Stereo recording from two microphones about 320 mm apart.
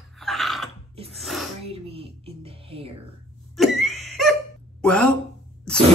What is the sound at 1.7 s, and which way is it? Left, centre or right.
Music, centre.